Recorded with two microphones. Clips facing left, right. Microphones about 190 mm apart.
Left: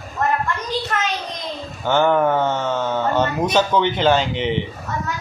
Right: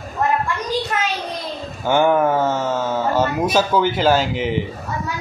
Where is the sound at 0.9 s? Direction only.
10° right (ahead or behind).